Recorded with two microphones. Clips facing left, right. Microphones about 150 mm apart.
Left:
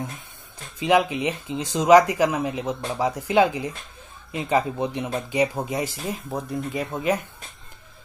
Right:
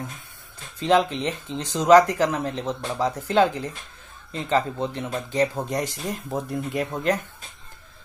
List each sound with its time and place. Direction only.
0.7 s speech: 10° left (ahead or behind)